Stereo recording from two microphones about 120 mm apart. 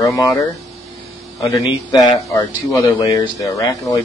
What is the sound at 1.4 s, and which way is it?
Speech, 30° left (ahead or behind).